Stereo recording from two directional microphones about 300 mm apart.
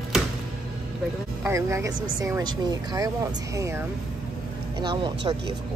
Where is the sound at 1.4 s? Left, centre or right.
Centre.